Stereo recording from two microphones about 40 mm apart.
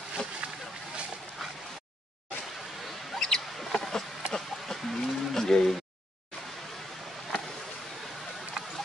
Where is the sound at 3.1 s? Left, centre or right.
Centre.